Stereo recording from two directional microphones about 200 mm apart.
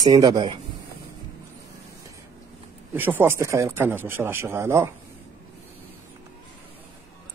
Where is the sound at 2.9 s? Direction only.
10° right (ahead or behind).